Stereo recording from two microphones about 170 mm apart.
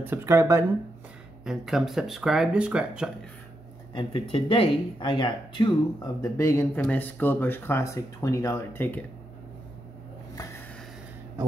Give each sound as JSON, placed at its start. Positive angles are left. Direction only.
{"t": 0.0, "sound": "speech", "side_deg": -15}
{"t": 1.4, "sound": "speech", "side_deg": 0}
{"t": 3.9, "sound": "speech", "side_deg": 35}
{"t": 6.2, "sound": "speech", "side_deg": 15}
{"t": 10.3, "sound": "a sound", "side_deg": 20}